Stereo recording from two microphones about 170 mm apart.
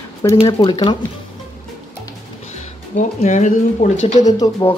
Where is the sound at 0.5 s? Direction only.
30° left (ahead or behind).